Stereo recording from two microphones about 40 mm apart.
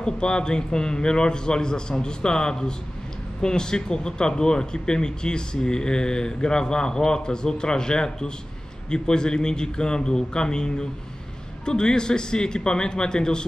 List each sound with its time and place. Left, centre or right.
0.0 s speech: left